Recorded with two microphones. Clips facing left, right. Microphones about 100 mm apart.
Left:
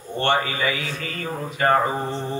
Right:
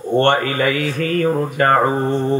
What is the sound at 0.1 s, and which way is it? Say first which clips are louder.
A man's voice: right 7 dB; 55° right (ahead or behind).